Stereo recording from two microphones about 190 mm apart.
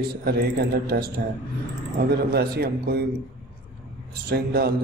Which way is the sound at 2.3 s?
55° right (ahead or behind).